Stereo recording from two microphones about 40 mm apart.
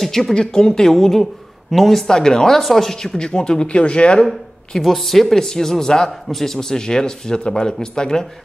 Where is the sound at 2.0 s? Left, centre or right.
Centre.